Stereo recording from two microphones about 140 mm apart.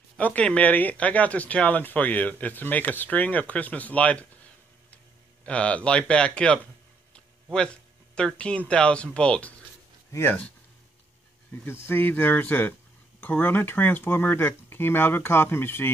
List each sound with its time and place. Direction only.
0.2 s speech: 10° left (ahead or behind)
11.6 s speech: 15° left (ahead or behind)